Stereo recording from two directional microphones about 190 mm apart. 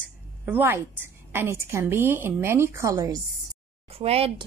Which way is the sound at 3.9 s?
30° right (ahead or behind).